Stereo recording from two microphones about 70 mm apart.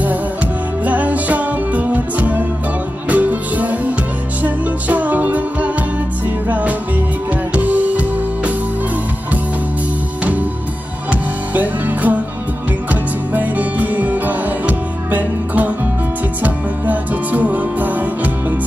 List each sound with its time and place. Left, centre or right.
0.8 s music: right
11.1 s music: right